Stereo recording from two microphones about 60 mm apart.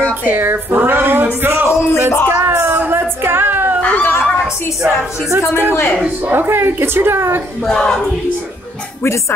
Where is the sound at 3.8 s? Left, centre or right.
Left.